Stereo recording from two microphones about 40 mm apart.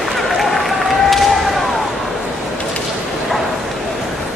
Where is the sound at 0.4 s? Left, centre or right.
Centre.